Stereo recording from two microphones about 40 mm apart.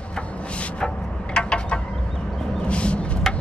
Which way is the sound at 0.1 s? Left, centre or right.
Left.